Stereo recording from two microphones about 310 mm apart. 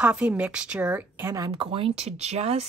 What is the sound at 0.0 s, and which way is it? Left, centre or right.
A woman's voice, centre.